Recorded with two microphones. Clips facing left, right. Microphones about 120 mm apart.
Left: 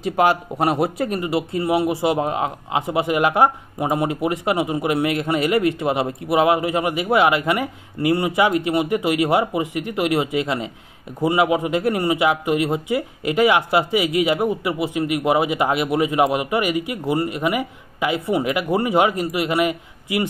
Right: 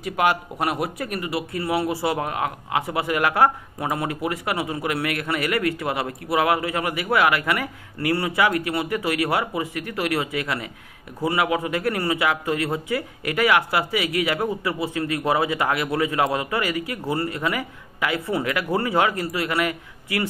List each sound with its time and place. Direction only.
0.0 s speech: 30° left (ahead or behind)